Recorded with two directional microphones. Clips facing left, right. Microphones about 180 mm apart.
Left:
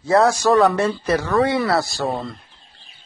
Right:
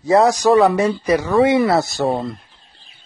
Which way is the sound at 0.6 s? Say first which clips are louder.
Right 2 dB; 10° right (ahead or behind).